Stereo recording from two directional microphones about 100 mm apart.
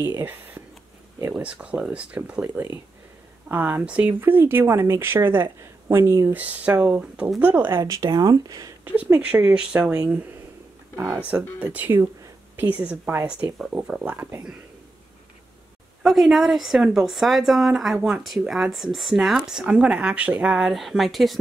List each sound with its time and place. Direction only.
0.0 s speech: 20° right (ahead or behind)
7.8 s speech: 40° right (ahead or behind)
8.8 s speech: 15° right (ahead or behind)
11.6 s speech: 15° right (ahead or behind)
16.0 s a woman's voice: centre (ahead or behind)